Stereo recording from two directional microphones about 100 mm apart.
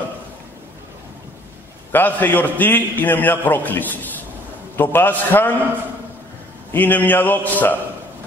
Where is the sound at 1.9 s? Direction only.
15° left (ahead or behind).